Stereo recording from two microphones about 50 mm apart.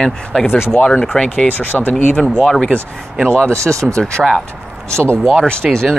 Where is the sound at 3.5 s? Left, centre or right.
Right.